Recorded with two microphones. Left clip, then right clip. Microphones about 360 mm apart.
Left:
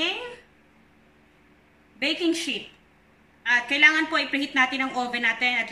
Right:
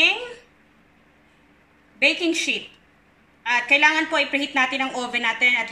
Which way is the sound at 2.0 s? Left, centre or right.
Centre.